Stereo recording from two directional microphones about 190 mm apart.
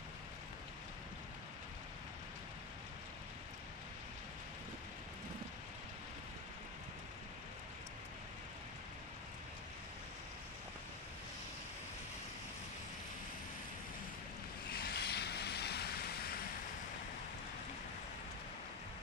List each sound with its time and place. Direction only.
14.7 s vehicle: 55° left (ahead or behind)